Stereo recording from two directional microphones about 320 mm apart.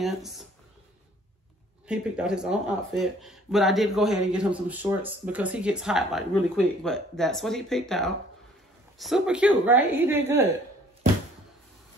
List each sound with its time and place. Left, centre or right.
0.0 s speech: centre
1.9 s speech: centre